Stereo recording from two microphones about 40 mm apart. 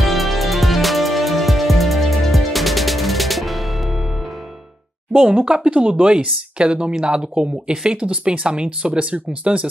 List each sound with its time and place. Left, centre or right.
0.0 s music: centre
5.1 s speech: right